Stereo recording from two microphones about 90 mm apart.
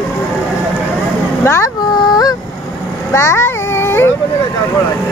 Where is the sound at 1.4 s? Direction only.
30° left (ahead or behind).